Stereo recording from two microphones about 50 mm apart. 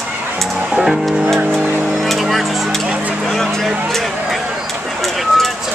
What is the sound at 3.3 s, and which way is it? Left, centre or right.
Speech, centre.